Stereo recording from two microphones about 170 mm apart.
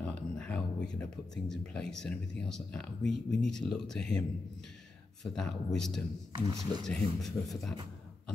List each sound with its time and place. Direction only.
0.0 s speech: 5° left (ahead or behind)
5.2 s speech: centre (ahead or behind)
6.3 s speech: 20° right (ahead or behind)
6.9 s speech: centre (ahead or behind)